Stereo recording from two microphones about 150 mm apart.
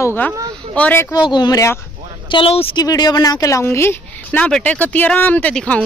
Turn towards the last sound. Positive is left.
turn(degrees=5)  # may be behind; listen again after turning